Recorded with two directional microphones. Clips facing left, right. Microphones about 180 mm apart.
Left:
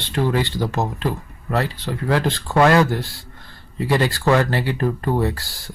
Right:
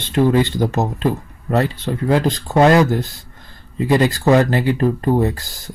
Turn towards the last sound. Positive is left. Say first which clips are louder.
# right 3 dB
turn(degrees=-20)  # may be behind; listen again after turning